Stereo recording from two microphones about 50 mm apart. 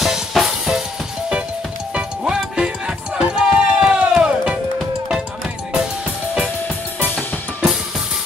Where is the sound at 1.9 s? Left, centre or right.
Centre.